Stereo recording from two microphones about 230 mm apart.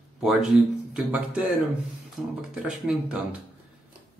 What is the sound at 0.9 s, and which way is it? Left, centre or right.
Speech, centre.